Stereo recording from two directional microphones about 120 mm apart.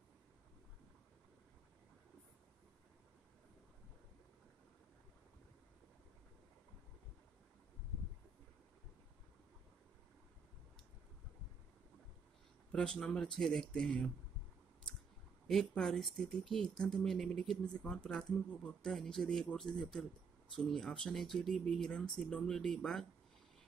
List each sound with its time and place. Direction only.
12.7 s speech: 5° left (ahead or behind)
15.4 s speech: 5° left (ahead or behind)